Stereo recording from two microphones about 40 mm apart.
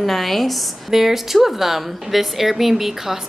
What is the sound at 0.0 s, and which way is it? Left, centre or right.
A woman's voice, centre.